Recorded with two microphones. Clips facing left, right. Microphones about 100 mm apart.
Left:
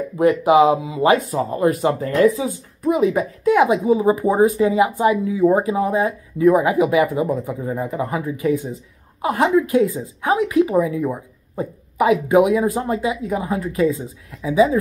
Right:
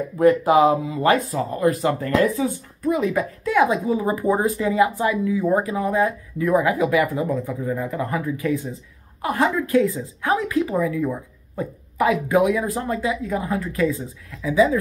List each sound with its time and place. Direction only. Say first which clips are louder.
0.2 s speech: left 1 dB; 15° left (ahead or behind)